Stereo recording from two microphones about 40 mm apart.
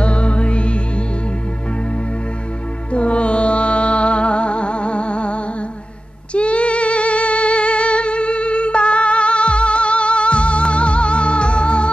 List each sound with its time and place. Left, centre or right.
0.0 s music: left
2.9 s music: left
6.3 s female singing: left